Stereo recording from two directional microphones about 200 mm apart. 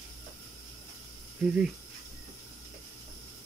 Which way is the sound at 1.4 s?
Centre (ahead or behind).